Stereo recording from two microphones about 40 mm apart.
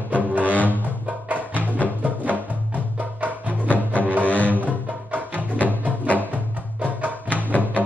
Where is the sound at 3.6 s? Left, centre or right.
Left.